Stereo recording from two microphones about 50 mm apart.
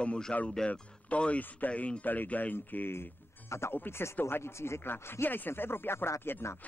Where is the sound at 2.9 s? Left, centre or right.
Left.